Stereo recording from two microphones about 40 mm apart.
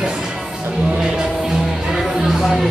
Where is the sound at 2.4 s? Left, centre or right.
Centre.